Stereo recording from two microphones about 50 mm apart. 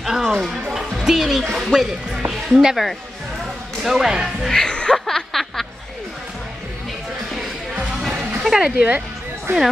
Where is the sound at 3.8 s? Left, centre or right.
Centre.